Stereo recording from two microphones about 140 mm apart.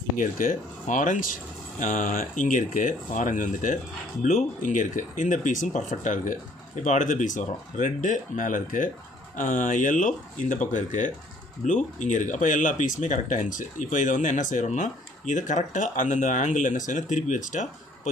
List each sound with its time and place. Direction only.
0.2 s speech: 75° left (ahead or behind)